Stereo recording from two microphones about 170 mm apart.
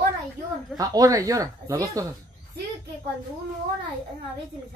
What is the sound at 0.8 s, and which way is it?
Speech, 20° right (ahead or behind).